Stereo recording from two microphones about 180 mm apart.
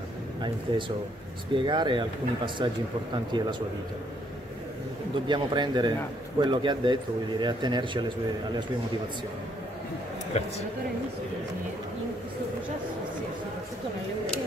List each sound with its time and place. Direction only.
0.4 s speech: 30° right (ahead or behind)
5.3 s speech: 25° right (ahead or behind)